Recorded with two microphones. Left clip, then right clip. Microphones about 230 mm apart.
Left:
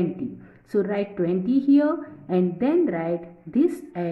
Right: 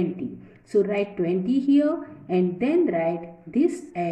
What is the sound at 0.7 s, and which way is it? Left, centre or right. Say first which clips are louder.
A woman's voice: right 2 dB; centre.